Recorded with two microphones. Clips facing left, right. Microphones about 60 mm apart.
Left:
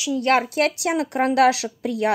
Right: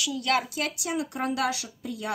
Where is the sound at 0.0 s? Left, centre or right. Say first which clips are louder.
Left 7 dB; left.